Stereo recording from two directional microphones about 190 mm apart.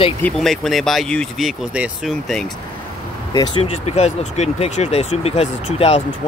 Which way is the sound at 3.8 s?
35° left (ahead or behind).